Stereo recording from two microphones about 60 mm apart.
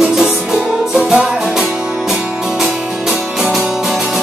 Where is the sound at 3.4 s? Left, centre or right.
Centre.